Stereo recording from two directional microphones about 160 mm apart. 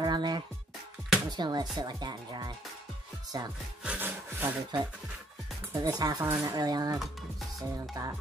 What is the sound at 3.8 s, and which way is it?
Sawing, 10° right (ahead or behind).